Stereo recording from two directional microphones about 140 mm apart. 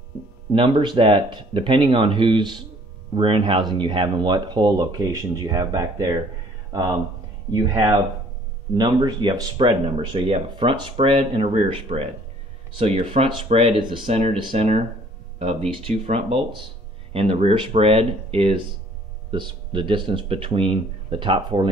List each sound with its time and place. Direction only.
0.5 s speech: 35° right (ahead or behind)
8.7 s speech: 30° right (ahead or behind)